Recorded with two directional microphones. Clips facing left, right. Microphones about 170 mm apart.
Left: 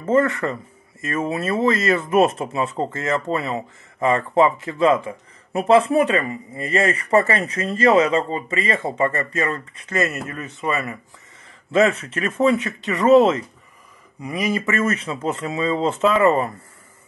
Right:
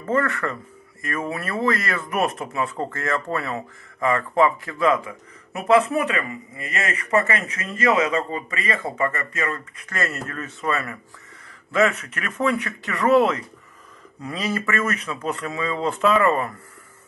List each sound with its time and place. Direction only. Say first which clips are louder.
0.0 s speech: left 5 dB; 20° left (ahead or behind)